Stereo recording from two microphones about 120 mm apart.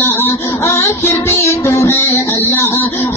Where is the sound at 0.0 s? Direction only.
20° left (ahead or behind).